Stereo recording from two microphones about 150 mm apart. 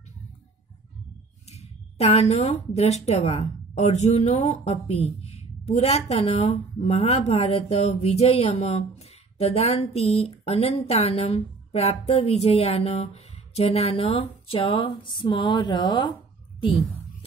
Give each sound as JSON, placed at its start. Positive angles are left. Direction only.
{"t": 1.5, "sound": "speech", "side_deg": 45}